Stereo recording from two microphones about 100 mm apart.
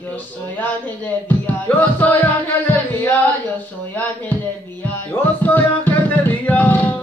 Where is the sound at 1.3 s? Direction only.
15° left (ahead or behind).